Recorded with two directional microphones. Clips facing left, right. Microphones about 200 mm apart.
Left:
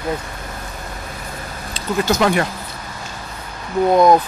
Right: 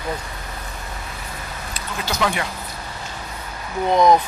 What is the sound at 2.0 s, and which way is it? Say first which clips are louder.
Speech: left 5 dB; 50° left (ahead or behind).